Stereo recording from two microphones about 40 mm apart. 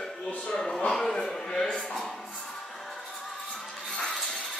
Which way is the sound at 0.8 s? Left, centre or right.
Centre.